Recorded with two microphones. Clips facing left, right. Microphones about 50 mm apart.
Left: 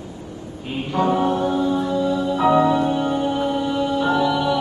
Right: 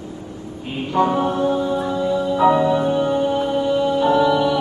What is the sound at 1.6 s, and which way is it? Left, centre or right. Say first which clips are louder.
Music: left 1 dB; right.